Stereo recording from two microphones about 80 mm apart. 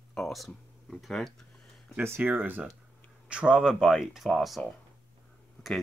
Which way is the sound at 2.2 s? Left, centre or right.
Right.